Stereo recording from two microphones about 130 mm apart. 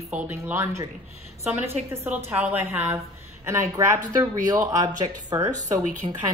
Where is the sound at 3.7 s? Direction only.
25° right (ahead or behind).